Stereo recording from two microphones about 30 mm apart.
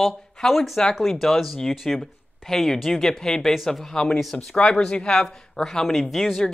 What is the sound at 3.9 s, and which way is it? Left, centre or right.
Speech, centre.